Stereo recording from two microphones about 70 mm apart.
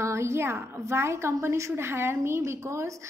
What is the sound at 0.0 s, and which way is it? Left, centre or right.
A woman's voice, right.